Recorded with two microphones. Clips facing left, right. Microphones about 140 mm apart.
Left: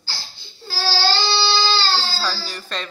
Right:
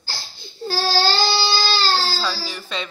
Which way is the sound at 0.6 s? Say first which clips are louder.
Right 10 dB; 45° right (ahead or behind).